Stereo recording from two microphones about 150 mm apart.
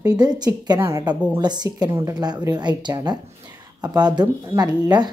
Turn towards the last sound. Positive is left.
turn(degrees=-25)  # may be behind; listen again after turning